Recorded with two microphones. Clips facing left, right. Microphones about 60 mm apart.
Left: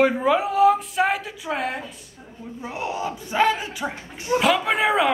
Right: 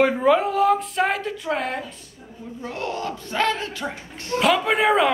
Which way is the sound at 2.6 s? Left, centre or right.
Centre.